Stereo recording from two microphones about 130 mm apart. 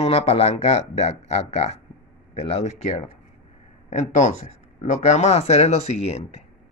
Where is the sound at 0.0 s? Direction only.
50° left (ahead or behind).